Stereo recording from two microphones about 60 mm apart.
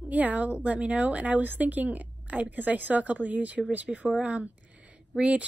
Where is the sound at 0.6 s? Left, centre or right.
Right.